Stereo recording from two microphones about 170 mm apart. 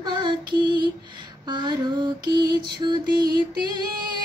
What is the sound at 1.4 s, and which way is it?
Mantra, 25° right (ahead or behind).